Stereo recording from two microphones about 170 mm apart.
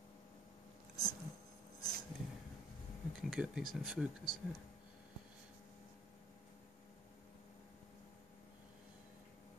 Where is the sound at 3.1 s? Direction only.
5° right (ahead or behind).